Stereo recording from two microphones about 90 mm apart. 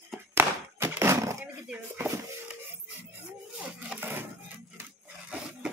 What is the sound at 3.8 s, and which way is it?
Wood, 20° right (ahead or behind).